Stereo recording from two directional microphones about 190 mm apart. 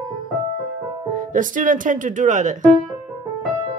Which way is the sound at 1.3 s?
45° right (ahead or behind).